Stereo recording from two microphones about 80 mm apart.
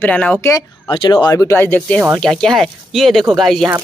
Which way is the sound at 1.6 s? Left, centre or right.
Centre.